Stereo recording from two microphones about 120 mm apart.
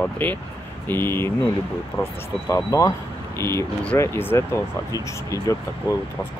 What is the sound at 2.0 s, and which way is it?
Speech, 35° left (ahead or behind).